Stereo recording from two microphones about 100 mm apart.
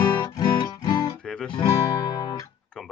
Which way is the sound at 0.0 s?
45° left (ahead or behind).